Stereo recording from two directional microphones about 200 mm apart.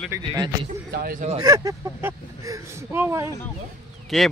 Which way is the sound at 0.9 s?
45° right (ahead or behind).